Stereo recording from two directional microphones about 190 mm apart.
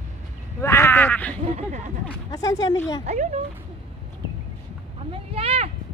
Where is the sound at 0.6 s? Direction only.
15° left (ahead or behind).